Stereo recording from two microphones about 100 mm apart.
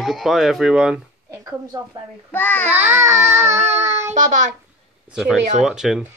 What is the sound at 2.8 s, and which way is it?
Child singing, 25° right (ahead or behind).